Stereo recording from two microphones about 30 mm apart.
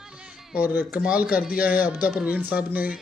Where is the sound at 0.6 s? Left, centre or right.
Right.